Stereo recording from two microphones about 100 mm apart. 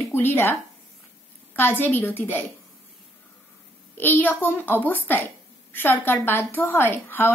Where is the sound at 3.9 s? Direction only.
20° left (ahead or behind).